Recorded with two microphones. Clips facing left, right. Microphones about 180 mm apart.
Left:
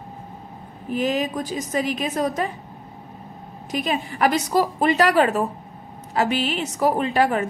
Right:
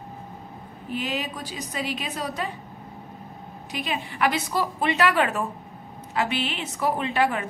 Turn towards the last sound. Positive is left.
turn(degrees=40)  # may be behind; listen again after turning